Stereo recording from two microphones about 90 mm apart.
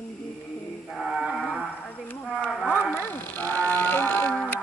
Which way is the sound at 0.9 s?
Centre (ahead or behind).